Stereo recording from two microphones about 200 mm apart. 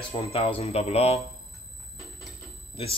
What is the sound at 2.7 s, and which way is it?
Speech, 30° left (ahead or behind).